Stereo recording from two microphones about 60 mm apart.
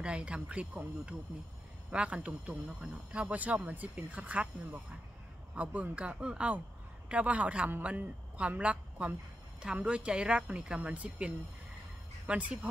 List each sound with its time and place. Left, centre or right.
0.0 s speech: centre